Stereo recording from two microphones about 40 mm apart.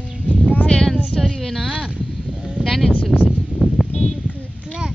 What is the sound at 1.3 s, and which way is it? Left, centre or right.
Speech, centre.